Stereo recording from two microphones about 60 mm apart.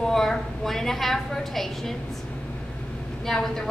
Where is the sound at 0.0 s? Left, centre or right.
Centre.